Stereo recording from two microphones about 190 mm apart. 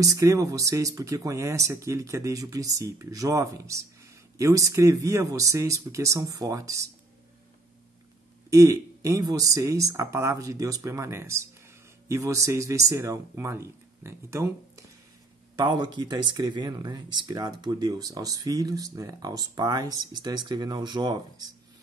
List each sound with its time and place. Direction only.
0.0 s speech: 15° right (ahead or behind)
8.5 s speech: 15° right (ahead or behind)